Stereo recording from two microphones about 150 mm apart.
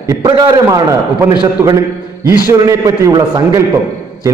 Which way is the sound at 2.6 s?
25° right (ahead or behind).